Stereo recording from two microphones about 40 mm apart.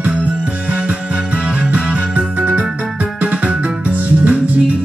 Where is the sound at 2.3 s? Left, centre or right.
Right.